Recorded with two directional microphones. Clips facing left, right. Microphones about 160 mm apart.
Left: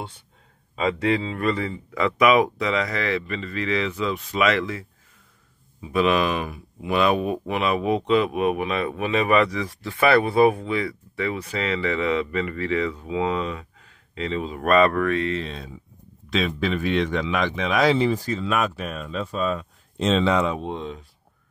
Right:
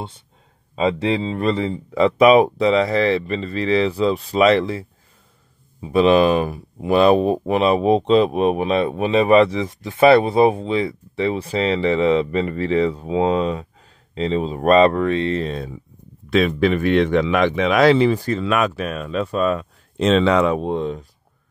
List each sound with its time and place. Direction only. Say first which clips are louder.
0.7 s speech: right 3 dB; 25° right (ahead or behind)
15.3 s speech: right 6 dB; 45° right (ahead or behind)